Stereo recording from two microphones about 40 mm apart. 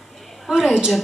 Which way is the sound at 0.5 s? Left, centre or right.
Centre.